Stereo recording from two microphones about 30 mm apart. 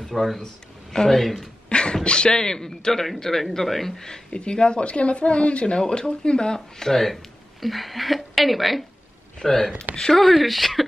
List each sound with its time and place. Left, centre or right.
0.0 s speech: centre
1.7 s beatboxing: left
2.0 s speech: left; by 3.9 s centre
4.3 s a woman's voice: left
5.8 s speech: left
6.9 s a woman's voice: centre
9.4 s speech: centre
10.2 s speech: centre